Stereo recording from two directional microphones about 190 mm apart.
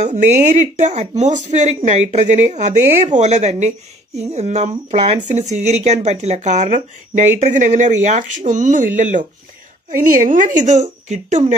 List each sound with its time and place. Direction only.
0.0 s speech: 40° right (ahead or behind)